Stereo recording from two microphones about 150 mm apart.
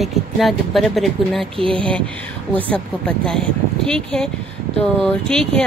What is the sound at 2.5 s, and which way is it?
Speech, 5° left (ahead or behind).